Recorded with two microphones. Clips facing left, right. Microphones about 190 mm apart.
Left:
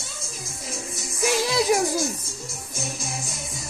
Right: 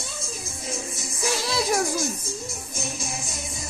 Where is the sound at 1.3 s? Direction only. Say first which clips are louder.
Left 4 dB; 15° left (ahead or behind).